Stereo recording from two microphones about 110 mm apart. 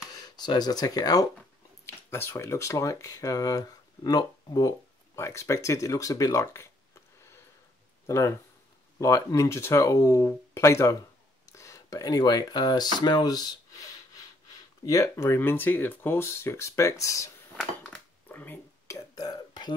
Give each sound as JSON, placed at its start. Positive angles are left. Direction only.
{"t": 0.1, "sound": "speech", "side_deg": 40}
{"t": 1.9, "sound": "speech", "side_deg": 20}
{"t": 8.1, "sound": "speech", "side_deg": 25}
{"t": 14.9, "sound": "speech", "side_deg": 25}
{"t": 18.3, "sound": "a sound", "side_deg": 15}
{"t": 18.9, "sound": "whispering", "side_deg": 35}